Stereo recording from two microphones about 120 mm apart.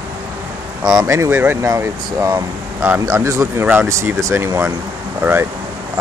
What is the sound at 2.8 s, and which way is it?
Speech, 15° right (ahead or behind).